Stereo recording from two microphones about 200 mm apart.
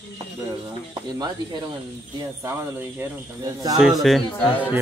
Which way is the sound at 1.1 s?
20° right (ahead or behind).